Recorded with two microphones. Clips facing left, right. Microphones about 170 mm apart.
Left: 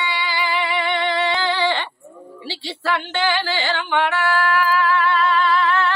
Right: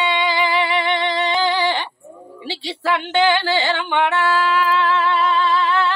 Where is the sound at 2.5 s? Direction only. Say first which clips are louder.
Right 2 dB; 15° right (ahead or behind).